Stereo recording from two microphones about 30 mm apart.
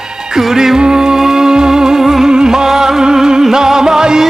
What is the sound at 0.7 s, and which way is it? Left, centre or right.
Music, right.